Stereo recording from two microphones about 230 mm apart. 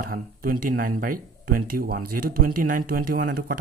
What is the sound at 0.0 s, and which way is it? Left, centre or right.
Speech, right.